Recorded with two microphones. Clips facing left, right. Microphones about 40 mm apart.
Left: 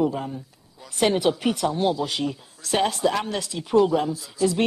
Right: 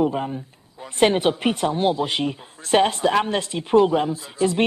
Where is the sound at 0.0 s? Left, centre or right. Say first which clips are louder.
Right 2 dB; right.